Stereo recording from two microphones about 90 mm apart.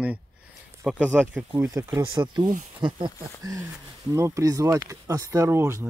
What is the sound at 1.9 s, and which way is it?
Speech, 55° right (ahead or behind).